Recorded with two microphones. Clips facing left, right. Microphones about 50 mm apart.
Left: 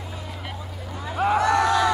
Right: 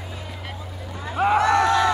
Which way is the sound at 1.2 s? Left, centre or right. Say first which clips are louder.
Right 2 dB; right.